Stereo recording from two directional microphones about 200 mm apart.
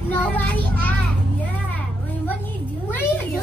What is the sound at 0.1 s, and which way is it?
Child singing, 10° left (ahead or behind).